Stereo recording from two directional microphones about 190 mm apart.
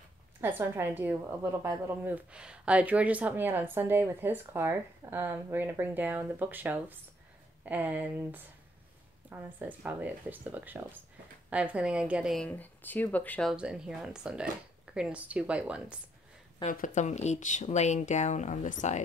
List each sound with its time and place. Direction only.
0.4 s a woman's voice: 10° right (ahead or behind)
12.4 s speech: 10° left (ahead or behind); by 16.0 s 5° right (ahead or behind)
16.7 s speech: 40° left (ahead or behind)